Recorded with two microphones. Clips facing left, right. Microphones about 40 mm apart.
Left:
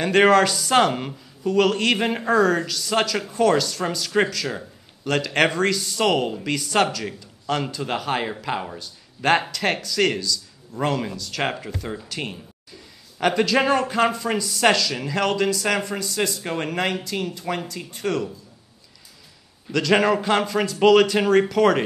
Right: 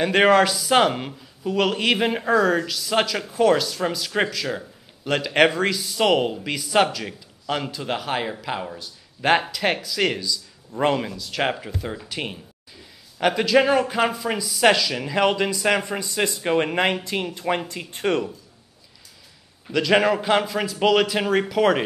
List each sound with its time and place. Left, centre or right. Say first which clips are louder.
0.0 s speech: even; centre; by 18.2 s right
19.7 s speech: even; centre